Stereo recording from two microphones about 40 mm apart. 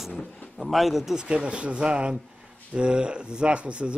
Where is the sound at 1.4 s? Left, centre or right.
Right.